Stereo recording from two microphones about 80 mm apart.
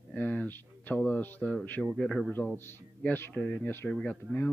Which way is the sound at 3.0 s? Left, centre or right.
Left.